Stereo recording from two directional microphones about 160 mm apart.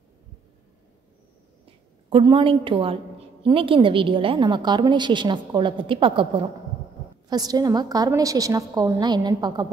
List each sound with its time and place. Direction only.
2.0 s a woman's voice: 35° right (ahead or behind)